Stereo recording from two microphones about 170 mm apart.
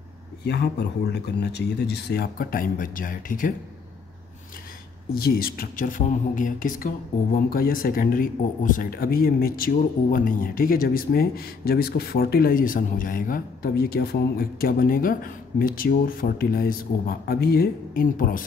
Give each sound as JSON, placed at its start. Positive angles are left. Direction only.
{"t": 0.4, "sound": "speech", "side_deg": 75}
{"t": 5.1, "sound": "speech", "side_deg": 65}